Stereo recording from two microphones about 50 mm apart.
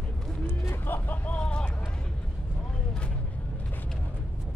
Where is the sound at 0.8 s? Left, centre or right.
Left.